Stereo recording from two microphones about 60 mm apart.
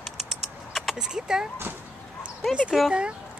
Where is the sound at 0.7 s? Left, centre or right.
Centre.